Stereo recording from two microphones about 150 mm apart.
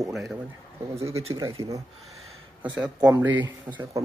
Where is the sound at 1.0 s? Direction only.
20° right (ahead or behind).